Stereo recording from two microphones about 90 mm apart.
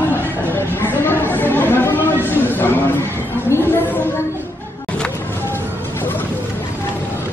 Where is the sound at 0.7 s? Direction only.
25° left (ahead or behind).